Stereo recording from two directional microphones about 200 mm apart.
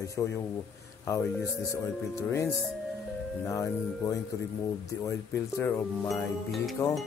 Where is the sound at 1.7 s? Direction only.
15° left (ahead or behind).